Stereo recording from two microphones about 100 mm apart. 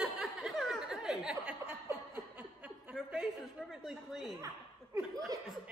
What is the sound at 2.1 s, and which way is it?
Chuckle, 15° right (ahead or behind).